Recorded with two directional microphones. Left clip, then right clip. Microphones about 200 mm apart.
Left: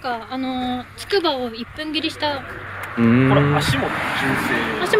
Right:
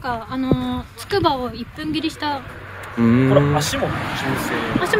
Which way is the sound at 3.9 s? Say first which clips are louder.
Left 3 dB; 15° left (ahead or behind).